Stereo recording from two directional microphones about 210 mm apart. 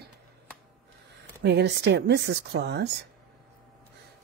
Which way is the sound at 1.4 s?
50° right (ahead or behind).